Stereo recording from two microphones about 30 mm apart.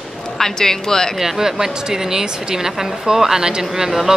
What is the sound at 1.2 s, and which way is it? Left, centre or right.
A woman's voice, centre.